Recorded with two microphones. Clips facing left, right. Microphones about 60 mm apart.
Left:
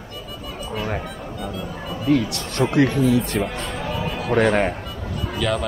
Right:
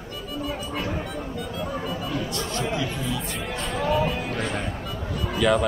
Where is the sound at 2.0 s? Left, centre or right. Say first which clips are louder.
Left 8 dB; left.